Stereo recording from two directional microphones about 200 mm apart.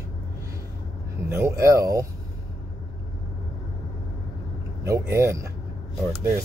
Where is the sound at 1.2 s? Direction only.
10° right (ahead or behind).